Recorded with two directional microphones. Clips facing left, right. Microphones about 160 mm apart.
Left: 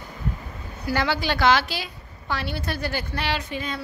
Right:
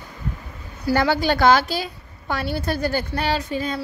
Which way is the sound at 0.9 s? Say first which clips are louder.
Right 5 dB; 45° right (ahead or behind).